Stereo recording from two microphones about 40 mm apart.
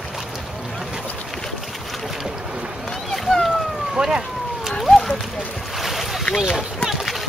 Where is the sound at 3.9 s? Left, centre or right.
Centre.